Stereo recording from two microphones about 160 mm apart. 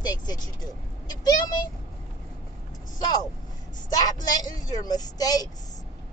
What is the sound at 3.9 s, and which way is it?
Vehicle, 25° left (ahead or behind).